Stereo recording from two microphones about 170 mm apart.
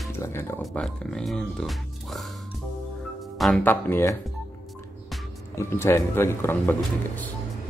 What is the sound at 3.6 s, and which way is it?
Speech, 10° left (ahead or behind).